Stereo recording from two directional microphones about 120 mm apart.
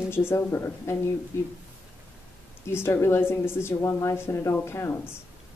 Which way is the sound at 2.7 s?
20° left (ahead or behind).